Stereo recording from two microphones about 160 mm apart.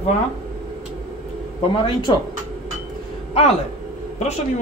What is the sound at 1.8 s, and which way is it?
Speech, 30° left (ahead or behind).